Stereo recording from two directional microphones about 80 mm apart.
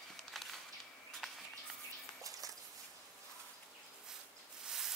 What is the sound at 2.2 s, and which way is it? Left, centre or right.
Walk, right.